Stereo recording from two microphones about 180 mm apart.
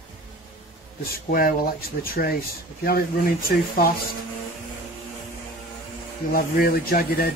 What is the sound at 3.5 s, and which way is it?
Speech, 55° left (ahead or behind).